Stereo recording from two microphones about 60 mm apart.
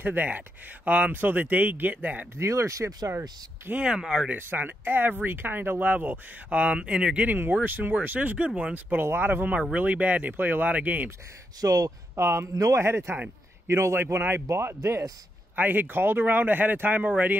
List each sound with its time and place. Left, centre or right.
0.0 s speech: right
2.3 s speech: right
3.7 s speech: centre
4.3 s speech: right; by 7.2 s centre
7.2 s speech: right
9.0 s speech: right
11.6 s speech: right
12.3 s speech: right
12.7 s a man's voice: right
15.5 s speech: right